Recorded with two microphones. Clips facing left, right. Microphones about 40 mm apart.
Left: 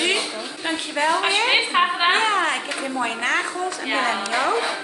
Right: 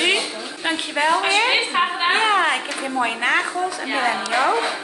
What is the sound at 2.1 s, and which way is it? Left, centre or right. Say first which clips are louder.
A woman's voice: right 2 dB; centre.